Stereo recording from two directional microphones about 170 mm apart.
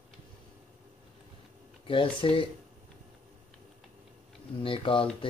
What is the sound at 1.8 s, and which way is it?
Speech, 30° left (ahead or behind).